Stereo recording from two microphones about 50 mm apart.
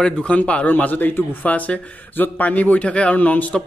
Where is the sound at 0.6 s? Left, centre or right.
Left.